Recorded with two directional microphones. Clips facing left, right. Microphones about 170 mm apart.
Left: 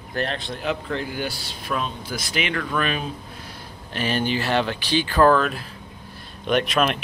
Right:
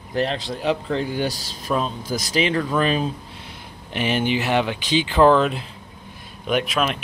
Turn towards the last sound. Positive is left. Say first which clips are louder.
# left 1 dB
turn(degrees=0)  # may be behind; listen again after turning